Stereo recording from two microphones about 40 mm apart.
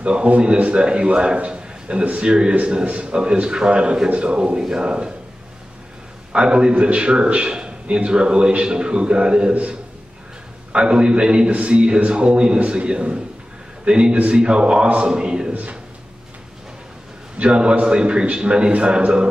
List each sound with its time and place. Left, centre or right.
0.0 s a man's voice: right
6.3 s a man's voice: right
9.5 s a man's voice: right
15.5 s a man's voice: right
17.4 s a man's voice: right